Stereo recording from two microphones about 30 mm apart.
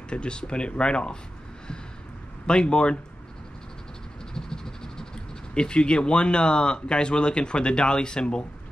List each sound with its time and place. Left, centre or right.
0.1 s speech: left
2.4 s speech: left
4.3 s a sound: centre
5.5 s speech: left